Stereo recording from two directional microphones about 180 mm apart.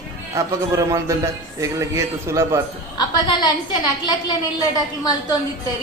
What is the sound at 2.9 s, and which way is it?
A woman's voice, 25° left (ahead or behind).